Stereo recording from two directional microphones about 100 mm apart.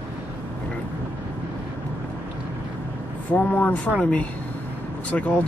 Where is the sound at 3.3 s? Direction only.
15° left (ahead or behind).